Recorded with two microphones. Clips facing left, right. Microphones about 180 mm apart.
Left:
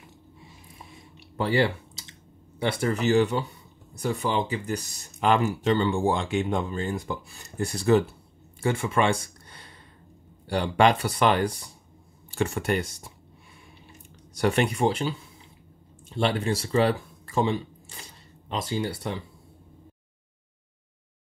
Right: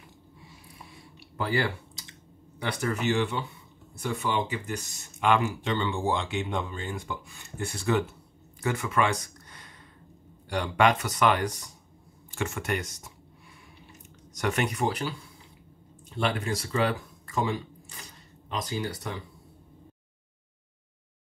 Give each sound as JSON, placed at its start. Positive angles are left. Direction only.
{"t": 0.9, "sound": "clicking", "side_deg": 25}
{"t": 2.6, "sound": "speech", "side_deg": 30}
{"t": 14.3, "sound": "speech", "side_deg": 30}
{"t": 16.2, "sound": "speech", "side_deg": 30}